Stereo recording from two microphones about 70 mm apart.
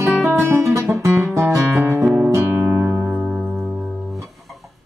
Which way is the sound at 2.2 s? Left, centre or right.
Right.